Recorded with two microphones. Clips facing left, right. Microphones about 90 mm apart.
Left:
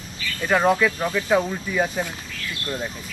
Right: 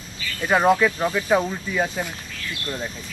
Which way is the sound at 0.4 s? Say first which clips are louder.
Right 1 dB; 10° right (ahead or behind).